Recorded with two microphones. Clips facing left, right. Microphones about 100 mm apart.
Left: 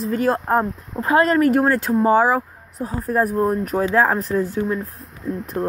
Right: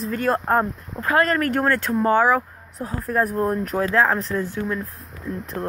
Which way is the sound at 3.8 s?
25° left (ahead or behind).